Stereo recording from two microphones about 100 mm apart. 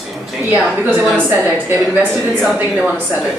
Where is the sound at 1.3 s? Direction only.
20° right (ahead or behind).